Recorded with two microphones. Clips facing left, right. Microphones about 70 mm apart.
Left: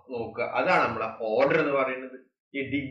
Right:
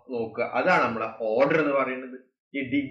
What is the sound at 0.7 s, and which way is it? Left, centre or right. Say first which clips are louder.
Speech: right 2 dB; centre.